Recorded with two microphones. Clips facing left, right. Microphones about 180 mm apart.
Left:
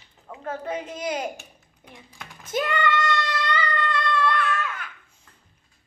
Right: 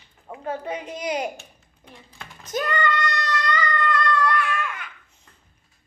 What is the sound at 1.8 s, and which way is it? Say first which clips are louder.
Typing: even; 5° left (ahead or behind).